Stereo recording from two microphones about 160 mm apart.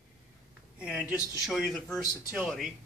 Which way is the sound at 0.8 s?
5° right (ahead or behind).